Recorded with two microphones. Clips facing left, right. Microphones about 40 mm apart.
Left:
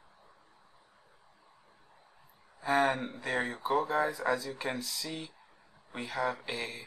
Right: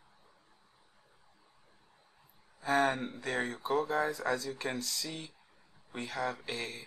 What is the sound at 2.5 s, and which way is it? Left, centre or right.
Speech, centre.